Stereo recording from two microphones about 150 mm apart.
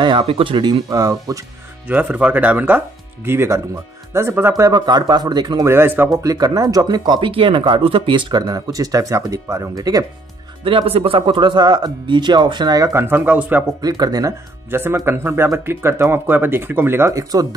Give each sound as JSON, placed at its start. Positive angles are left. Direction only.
{"t": 0.0, "sound": "speech", "side_deg": -35}
{"t": 1.9, "sound": "speech", "side_deg": -10}
{"t": 5.7, "sound": "speech", "side_deg": -15}
{"t": 6.3, "sound": "speech", "side_deg": -25}
{"t": 10.6, "sound": "speech", "side_deg": -40}
{"t": 13.7, "sound": "speech", "side_deg": -25}